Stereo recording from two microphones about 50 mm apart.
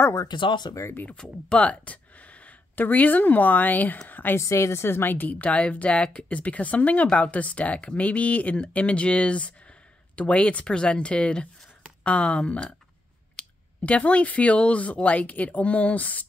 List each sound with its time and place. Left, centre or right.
0.0 s speech: left
1.1 s speech: centre; by 4.0 s left
4.1 s a sound: left
4.4 s speech: left